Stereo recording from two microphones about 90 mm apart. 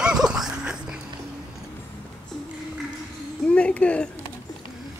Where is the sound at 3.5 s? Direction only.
10° left (ahead or behind).